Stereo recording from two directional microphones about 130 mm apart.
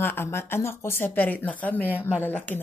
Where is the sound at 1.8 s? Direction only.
10° right (ahead or behind).